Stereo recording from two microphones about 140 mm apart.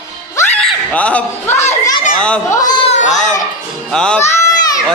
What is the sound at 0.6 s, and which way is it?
Speech, 10° left (ahead or behind).